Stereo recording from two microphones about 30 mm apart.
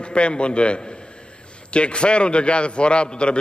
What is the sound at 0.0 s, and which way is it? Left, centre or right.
A man's voice, left.